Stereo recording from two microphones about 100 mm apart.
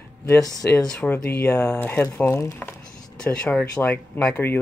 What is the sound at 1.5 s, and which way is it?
Speech, 25° left (ahead or behind).